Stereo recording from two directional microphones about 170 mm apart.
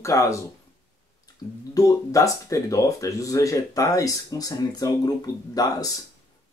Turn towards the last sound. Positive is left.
turn(degrees=20)  # may be behind; listen again after turning